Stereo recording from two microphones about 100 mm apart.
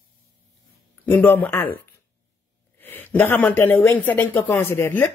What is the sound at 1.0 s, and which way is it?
Speech, 20° left (ahead or behind).